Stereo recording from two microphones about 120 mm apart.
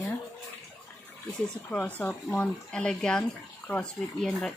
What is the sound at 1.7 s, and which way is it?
Speech, 15° left (ahead or behind).